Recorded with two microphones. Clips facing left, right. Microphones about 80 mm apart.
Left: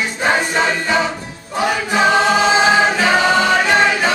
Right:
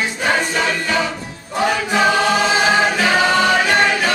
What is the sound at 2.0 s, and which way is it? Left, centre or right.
Choir, centre.